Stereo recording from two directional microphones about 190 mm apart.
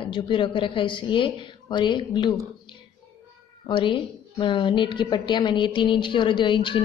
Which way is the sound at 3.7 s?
25° left (ahead or behind).